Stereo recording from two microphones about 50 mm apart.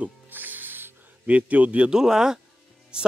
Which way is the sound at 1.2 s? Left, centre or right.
Right.